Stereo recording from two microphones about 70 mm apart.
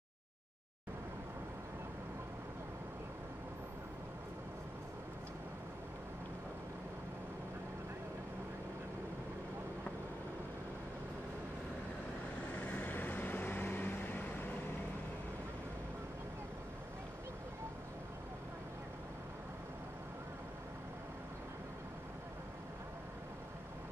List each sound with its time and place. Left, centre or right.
12.5 s vehicle: left